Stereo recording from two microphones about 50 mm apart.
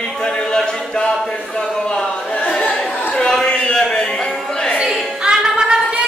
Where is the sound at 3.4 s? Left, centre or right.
Left.